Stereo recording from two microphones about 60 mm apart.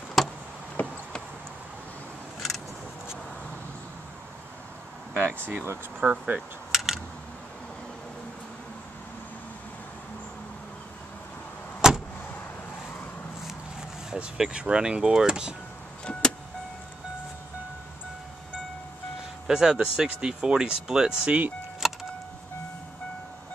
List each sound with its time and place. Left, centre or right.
0.2 s a sound: centre
0.8 s a sound: left
5.4 s speech: right
5.9 s speech: right
6.7 s a sound: centre
11.8 s vehicle: centre
14.1 s speech: centre
16.1 s vehicle: centre
19.4 s speech: centre
21.8 s vehicle: centre